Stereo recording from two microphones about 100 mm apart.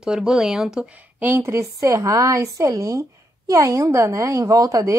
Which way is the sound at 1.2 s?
20° right (ahead or behind).